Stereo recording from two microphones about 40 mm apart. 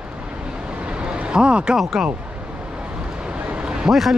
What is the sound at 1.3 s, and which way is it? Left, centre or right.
Speech, right.